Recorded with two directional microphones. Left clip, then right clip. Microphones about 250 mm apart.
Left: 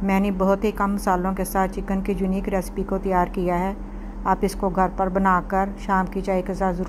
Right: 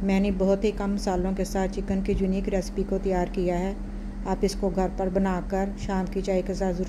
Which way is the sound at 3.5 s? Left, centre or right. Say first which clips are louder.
Left 5 dB; centre.